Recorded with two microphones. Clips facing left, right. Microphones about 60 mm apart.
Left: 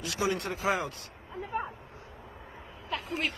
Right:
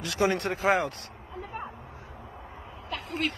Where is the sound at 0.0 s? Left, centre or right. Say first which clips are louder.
Right 4 dB; right.